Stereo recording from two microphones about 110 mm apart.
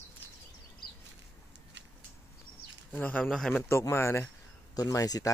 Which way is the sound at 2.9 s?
15° left (ahead or behind).